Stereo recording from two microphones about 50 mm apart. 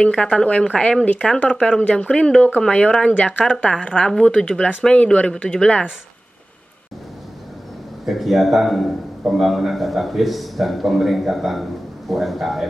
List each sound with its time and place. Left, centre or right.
0.0 s speech: left
8.0 s a man's voice: centre